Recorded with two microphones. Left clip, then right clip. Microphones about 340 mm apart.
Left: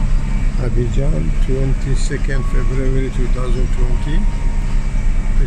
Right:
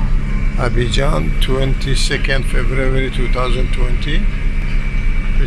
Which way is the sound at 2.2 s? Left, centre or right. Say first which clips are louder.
Right 6 dB; right.